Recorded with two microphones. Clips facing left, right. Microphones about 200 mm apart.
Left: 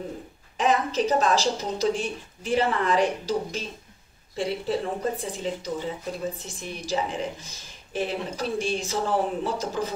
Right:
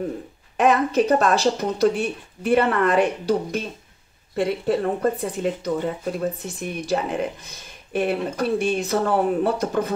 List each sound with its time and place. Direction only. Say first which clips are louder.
0.6 s speech: right 5 dB; 60° right (ahead or behind)